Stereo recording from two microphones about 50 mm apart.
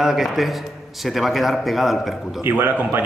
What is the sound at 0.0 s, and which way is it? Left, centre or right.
A man's voice, centre.